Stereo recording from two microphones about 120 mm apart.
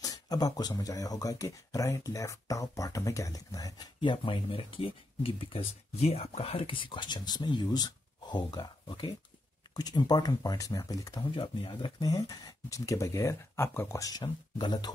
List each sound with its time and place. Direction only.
0.0 s speech: 30° left (ahead or behind)